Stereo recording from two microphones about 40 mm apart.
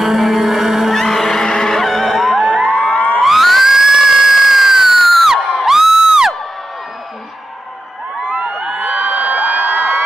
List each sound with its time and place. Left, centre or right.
0.0 s a sound: centre
0.9 s music: centre
2.7 s music: left
3.2 s music: centre
5.7 s crowd: centre
8.3 s a sound: right